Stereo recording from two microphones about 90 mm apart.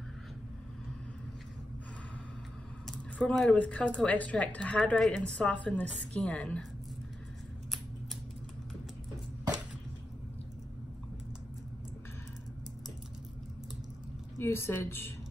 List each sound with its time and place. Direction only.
2.9 s a sound: 5° left (ahead or behind)
3.5 s a woman's voice: 15° left (ahead or behind)
14.4 s speech: 25° left (ahead or behind)